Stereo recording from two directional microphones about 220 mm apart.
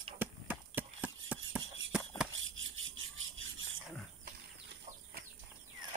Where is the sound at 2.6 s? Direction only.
60° right (ahead or behind).